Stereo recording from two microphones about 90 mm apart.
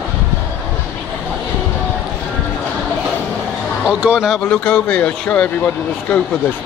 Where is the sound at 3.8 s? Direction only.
5° right (ahead or behind).